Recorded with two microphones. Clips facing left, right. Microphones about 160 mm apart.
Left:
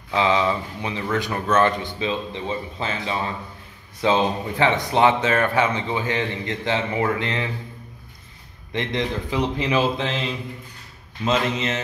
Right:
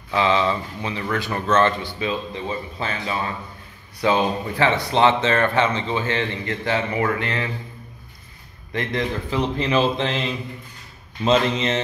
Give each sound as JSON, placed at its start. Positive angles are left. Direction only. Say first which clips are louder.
{"t": 0.1, "sound": "speech", "louder": "even", "side_deg": 15}
{"t": 8.7, "sound": "speech", "louder": "even", "side_deg": 15}
{"t": 9.9, "sound": "mantra", "louder": "right 2 dB", "side_deg": 0}
{"t": 11.2, "sound": "a man's voice", "louder": "right 3 dB", "side_deg": -30}